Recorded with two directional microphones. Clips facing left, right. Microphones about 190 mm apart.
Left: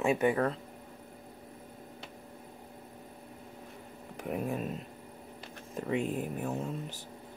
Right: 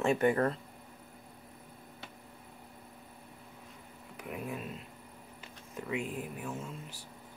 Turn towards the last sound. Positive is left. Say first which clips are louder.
# left 6 dB
turn(degrees=40)  # may be behind; listen again after turning